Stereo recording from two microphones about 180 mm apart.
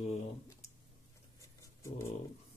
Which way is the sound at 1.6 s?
15° left (ahead or behind).